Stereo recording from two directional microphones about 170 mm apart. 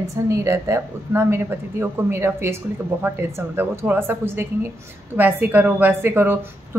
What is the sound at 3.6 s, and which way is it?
Speech, 10° right (ahead or behind).